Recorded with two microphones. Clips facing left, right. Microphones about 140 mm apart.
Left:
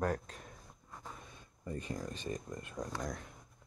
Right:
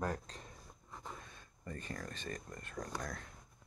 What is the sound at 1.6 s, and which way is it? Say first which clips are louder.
Speech: left 5 dB; 15° left (ahead or behind).